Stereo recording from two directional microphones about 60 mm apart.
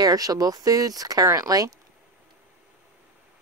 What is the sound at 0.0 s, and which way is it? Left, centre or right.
Speech, right.